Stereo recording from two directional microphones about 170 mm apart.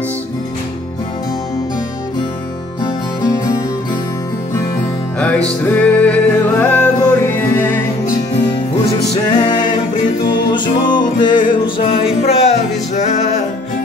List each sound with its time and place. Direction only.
2.8 s music: 20° left (ahead or behind)
5.2 s music: 5° left (ahead or behind)
9.4 s music: 25° left (ahead or behind)
10.9 s music: 25° left (ahead or behind); by 13.4 s 40° left (ahead or behind)